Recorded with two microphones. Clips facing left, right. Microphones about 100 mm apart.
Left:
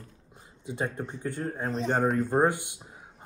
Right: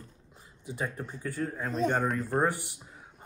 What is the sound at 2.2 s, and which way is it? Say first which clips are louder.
Speech: left 4 dB; 20° left (ahead or behind).